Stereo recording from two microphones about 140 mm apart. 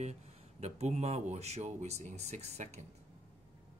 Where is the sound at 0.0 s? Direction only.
50° right (ahead or behind).